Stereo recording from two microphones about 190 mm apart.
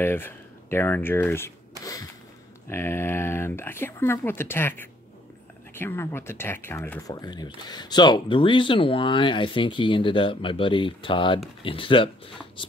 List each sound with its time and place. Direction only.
0.0 s speech: 10° left (ahead or behind)
2.7 s speech: 10° left (ahead or behind)